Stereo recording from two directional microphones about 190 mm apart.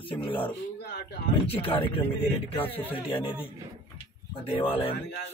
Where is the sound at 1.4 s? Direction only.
30° left (ahead or behind).